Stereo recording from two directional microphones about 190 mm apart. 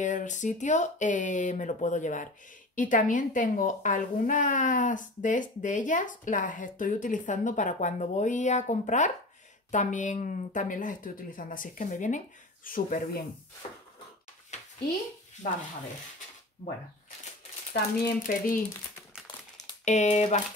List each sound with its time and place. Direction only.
0.0 s speech: 40° left (ahead or behind)
18.2 s speech: 45° left (ahead or behind)
19.8 s speech: 35° left (ahead or behind)